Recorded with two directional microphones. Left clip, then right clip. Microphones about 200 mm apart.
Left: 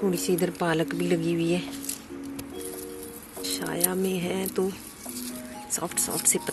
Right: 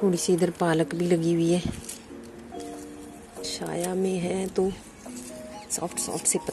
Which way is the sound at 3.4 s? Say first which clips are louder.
Left 1 dB; 10° right (ahead or behind).